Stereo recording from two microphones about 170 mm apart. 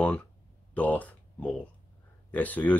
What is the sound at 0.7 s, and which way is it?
Speech, 10° left (ahead or behind).